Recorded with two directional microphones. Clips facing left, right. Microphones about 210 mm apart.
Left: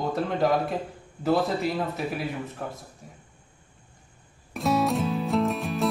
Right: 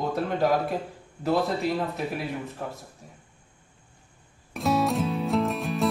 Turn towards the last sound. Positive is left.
turn(degrees=0)  # may be behind; listen again after turning